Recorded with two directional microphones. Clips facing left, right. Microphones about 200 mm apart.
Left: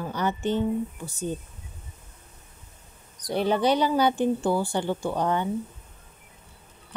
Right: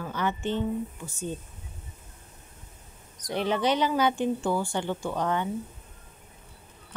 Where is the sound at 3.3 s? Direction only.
35° left (ahead or behind).